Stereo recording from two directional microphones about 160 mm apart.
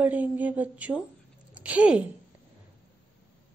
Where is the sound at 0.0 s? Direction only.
10° right (ahead or behind).